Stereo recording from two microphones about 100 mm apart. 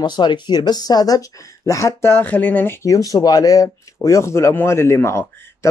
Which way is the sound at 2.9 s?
35° left (ahead or behind).